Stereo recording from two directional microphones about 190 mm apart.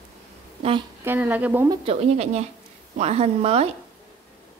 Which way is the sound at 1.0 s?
10° right (ahead or behind).